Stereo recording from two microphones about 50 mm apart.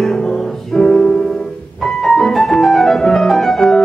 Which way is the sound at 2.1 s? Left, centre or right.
Centre.